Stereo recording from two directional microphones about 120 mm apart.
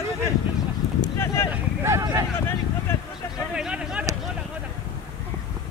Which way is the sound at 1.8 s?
25° right (ahead or behind).